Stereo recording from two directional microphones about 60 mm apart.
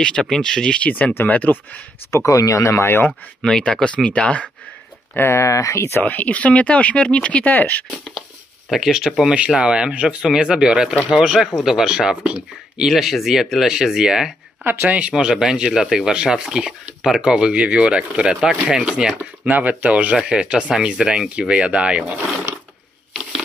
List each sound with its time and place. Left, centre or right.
0.2 s speech: centre; by 1.8 s left
2.0 s speech: left
3.1 s speech: centre
5.1 s speech: left
6.0 s speech: left
8.6 s speech: centre
14.6 s speech: right
14.9 s speech: right
19.4 s speech: right